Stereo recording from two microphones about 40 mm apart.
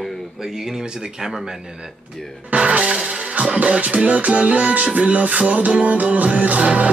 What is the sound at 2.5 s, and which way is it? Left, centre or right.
Music, right.